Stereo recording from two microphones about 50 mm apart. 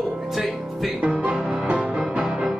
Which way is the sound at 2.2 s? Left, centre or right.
Centre.